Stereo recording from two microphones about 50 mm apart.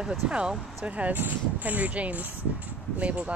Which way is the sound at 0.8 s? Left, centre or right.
Right.